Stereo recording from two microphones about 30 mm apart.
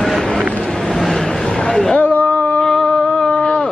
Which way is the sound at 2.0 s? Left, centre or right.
Left.